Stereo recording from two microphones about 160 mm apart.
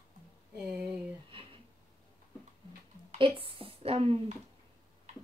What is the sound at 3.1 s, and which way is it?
Speech, 30° right (ahead or behind).